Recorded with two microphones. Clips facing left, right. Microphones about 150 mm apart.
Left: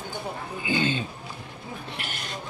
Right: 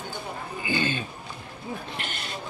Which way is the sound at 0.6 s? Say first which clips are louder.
Left 2 dB; 15° left (ahead or behind).